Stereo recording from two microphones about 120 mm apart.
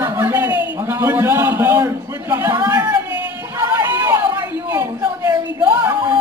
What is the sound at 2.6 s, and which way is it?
Speech, 20° right (ahead or behind).